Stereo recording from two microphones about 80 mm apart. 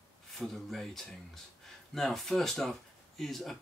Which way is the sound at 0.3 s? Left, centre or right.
Centre.